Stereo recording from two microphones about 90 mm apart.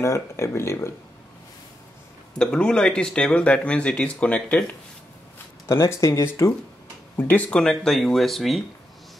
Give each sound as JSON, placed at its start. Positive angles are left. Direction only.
{"t": 0.0, "sound": "speech", "side_deg": 35}
{"t": 2.3, "sound": "speech", "side_deg": 10}
{"t": 5.7, "sound": "speech", "side_deg": 30}
{"t": 7.2, "sound": "speech", "side_deg": 20}